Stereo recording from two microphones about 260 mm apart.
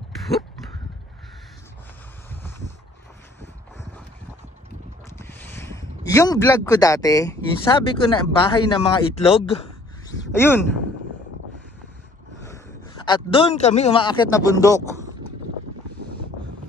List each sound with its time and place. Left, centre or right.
2.2 s a sound: centre
5.2 s speech: centre
10.2 s speech: centre
13.0 s a man's voice: centre